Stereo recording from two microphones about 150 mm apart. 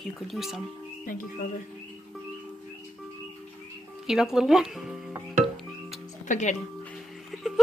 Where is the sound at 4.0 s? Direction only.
5° right (ahead or behind).